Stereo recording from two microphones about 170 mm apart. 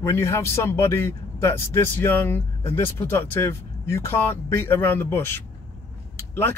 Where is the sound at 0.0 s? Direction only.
15° left (ahead or behind).